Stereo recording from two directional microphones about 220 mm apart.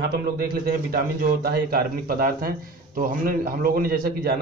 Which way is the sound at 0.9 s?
45° right (ahead or behind).